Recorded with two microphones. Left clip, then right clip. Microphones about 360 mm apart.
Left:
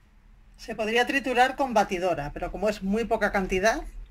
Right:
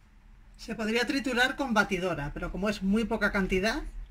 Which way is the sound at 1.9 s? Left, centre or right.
Centre.